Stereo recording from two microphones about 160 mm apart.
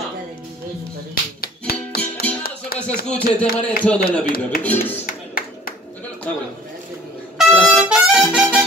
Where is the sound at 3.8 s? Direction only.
10° left (ahead or behind).